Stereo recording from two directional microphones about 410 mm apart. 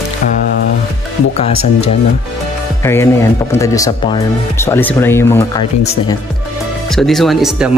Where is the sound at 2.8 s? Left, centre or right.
Centre.